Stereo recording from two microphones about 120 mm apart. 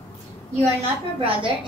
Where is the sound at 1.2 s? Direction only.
45° right (ahead or behind).